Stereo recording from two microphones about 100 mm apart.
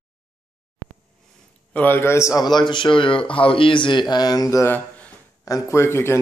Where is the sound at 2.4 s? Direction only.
45° left (ahead or behind).